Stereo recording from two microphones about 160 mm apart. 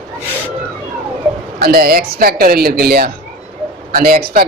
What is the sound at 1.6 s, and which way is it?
Speech, 70° right (ahead or behind).